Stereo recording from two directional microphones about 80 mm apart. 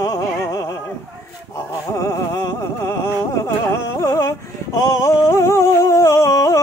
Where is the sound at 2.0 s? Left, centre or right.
Left.